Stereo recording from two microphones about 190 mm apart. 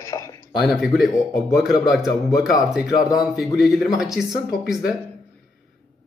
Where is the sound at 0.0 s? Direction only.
15° left (ahead or behind).